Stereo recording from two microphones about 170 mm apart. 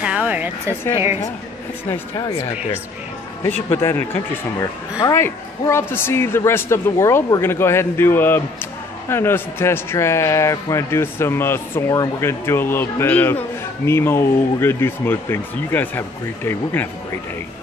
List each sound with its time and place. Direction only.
0.0 s music: 5° right (ahead or behind)
0.9 s a woman's voice: 15° right (ahead or behind)
1.9 s speech: 25° left (ahead or behind)
3.4 s a man's voice: 15° left (ahead or behind)